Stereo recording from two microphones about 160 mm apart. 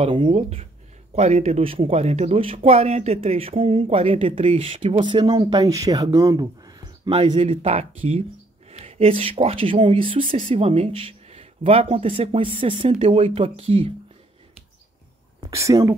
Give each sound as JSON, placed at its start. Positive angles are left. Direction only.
{"t": 0.0, "sound": "speech", "side_deg": -35}
{"t": 7.1, "sound": "speech", "side_deg": -40}
{"t": 15.4, "sound": "speech", "side_deg": -20}